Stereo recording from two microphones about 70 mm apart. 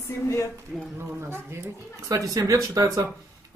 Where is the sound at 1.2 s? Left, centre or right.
Right.